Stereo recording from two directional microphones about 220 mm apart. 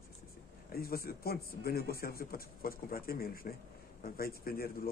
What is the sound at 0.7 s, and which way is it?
A man's voice, 45° left (ahead or behind).